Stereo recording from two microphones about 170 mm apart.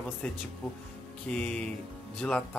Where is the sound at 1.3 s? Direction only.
5° left (ahead or behind).